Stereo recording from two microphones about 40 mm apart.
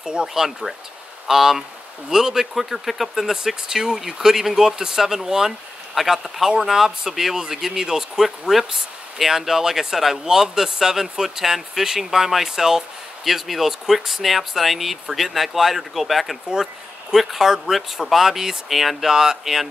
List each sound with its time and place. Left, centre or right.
0.0 s speech: right
0.3 s speech: centre